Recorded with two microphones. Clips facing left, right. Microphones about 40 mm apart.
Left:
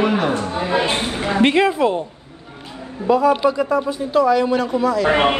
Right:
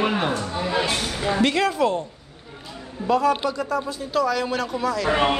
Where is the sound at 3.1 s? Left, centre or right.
Centre.